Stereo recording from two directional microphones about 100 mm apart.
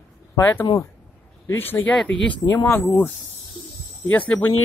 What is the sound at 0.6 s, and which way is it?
Speech, 35° left (ahead or behind).